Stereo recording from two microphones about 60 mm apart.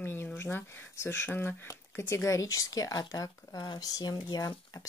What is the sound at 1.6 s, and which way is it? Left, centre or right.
Speech, left.